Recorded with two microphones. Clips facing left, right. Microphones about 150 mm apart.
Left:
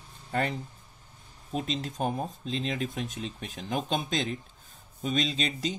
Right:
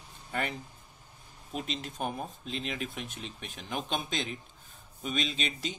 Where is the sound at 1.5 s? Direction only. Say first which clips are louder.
Left 5 dB; 35° left (ahead or behind).